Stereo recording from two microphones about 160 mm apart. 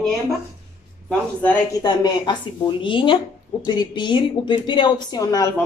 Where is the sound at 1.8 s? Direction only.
25° left (ahead or behind).